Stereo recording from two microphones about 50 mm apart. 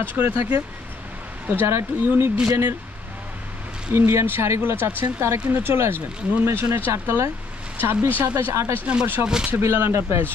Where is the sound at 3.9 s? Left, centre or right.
Right.